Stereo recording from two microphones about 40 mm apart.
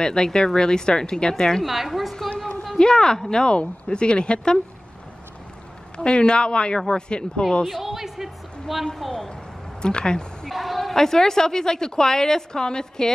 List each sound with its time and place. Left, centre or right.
0.0 s speech: centre
1.7 s a woman's voice: centre
2.1 s a sound: centre
2.8 s speech: centre
5.9 s speech: left
7.8 s a woman's voice: centre
8.9 s a woman's voice: centre
9.8 s speech: left
10.5 s speech: centre